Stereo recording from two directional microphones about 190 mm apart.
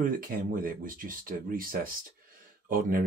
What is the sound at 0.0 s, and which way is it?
Speech, 45° right (ahead or behind).